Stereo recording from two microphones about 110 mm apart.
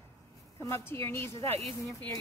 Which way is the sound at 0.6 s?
25° left (ahead or behind).